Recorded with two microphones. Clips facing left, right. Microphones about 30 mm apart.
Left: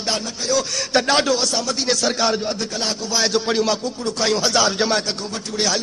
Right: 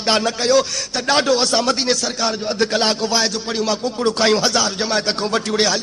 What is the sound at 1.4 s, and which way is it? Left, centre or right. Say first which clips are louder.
Speech: right 4 dB; right.